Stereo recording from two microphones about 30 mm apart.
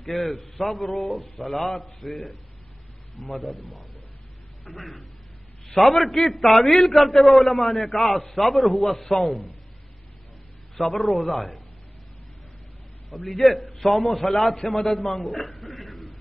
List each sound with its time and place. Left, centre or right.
0.4 s a man's voice: centre
1.0 s speech: left
1.4 s a man's voice: centre
3.3 s a man's voice: centre
5.7 s a man's voice: centre
10.8 s a man's voice: centre
13.2 s a man's voice: centre